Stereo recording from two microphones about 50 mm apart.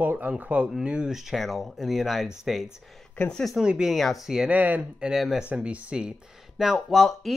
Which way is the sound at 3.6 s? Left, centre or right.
Centre.